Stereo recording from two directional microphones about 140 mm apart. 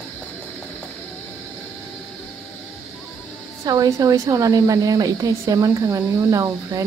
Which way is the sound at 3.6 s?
25° right (ahead or behind).